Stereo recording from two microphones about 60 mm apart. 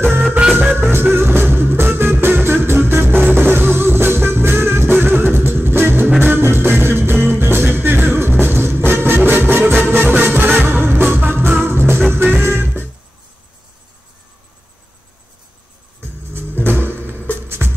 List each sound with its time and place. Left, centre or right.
0.6 s music: right
16.3 s music: right